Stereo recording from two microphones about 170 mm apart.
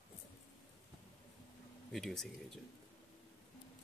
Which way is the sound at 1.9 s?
Centre (ahead or behind).